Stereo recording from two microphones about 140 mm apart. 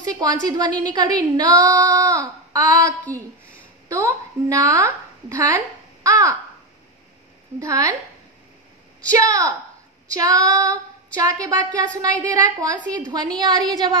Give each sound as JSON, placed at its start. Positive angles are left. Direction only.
{"t": 0.1, "sound": "child singing", "side_deg": -30}
{"t": 3.9, "sound": "a woman's voice", "side_deg": -25}
{"t": 7.5, "sound": "child singing", "side_deg": -25}
{"t": 9.1, "sound": "child singing", "side_deg": -25}
{"t": 13.4, "sound": "a woman's voice", "side_deg": -30}